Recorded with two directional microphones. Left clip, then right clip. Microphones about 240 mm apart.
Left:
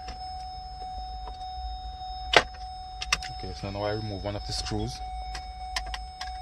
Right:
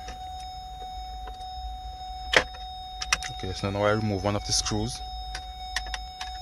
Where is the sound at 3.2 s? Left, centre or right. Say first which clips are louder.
Right 4 dB; right.